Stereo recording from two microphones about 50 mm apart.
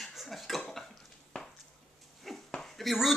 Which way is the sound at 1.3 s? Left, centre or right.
Left.